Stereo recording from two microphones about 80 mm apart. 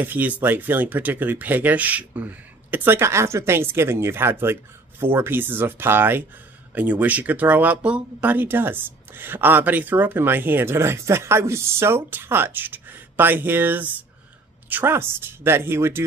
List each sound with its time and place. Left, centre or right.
0.0 s speech: right